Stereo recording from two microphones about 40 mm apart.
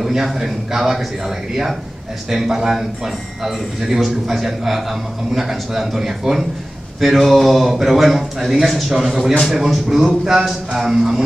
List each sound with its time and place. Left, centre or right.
0.0 s a man's voice: centre